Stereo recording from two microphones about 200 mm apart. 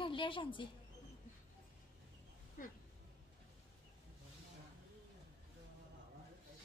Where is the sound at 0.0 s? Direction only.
25° left (ahead or behind).